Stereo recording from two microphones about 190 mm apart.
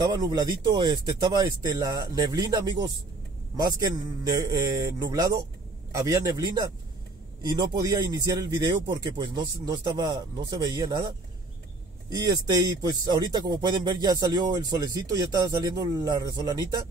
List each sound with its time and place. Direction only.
0.0 s speech: 20° right (ahead or behind)
12.1 s speech: 20° right (ahead or behind)